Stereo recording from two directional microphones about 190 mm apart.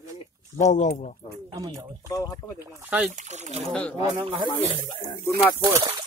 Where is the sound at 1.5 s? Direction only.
20° right (ahead or behind).